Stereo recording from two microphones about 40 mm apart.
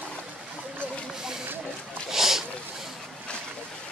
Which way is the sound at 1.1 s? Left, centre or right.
Centre.